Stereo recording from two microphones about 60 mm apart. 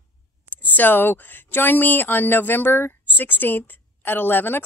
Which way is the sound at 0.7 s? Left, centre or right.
Left.